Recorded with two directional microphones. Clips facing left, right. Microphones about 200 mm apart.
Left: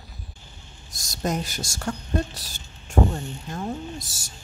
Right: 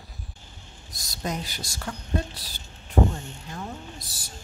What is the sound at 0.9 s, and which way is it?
A woman's voice, 45° left (ahead or behind).